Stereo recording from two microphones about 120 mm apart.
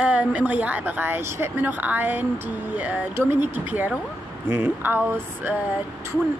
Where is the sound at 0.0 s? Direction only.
10° right (ahead or behind).